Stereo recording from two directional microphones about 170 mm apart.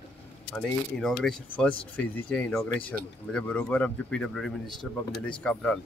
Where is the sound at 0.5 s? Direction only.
5° left (ahead or behind).